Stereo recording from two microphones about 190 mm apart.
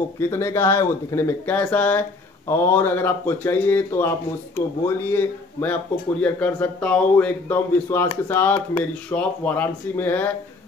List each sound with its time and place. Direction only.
0.2 s speech: 15° left (ahead or behind)